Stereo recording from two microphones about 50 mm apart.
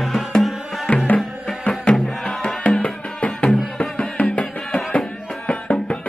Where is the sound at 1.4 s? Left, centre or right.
Left.